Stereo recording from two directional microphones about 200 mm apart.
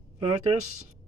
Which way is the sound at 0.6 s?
90° right.